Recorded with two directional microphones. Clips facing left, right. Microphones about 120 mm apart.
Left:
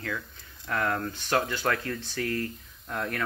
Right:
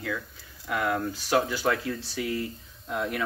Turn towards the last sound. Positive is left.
turn(degrees=-10)  # may be behind; listen again after turning